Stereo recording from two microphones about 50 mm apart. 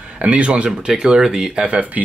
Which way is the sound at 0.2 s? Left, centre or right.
Right.